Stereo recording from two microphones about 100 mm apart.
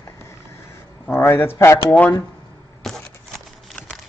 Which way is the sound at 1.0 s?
20° left (ahead or behind).